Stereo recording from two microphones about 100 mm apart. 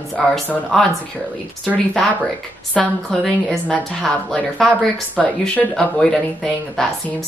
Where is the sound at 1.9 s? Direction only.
5° left (ahead or behind).